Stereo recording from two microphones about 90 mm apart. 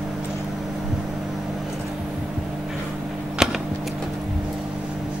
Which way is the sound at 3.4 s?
5° right (ahead or behind).